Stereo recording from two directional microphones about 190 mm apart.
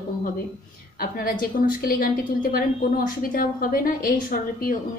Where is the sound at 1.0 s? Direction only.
50° left (ahead or behind).